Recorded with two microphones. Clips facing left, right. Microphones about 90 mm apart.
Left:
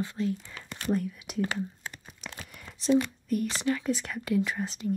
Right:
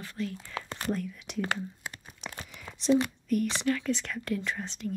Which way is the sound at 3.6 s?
20° left (ahead or behind).